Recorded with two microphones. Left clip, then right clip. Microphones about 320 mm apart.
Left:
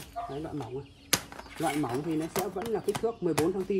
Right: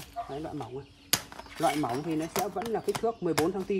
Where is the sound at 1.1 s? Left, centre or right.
Centre.